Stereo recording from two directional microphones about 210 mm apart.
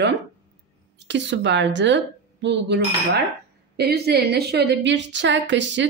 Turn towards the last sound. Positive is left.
turn(degrees=-60)  # may be behind; listen again after turning